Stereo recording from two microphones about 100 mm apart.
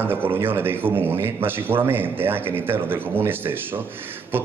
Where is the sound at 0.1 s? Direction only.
20° right (ahead or behind).